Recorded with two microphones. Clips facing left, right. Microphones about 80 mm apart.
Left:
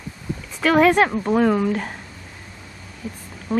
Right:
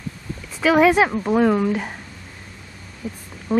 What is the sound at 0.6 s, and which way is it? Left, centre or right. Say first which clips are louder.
Speech: even; centre.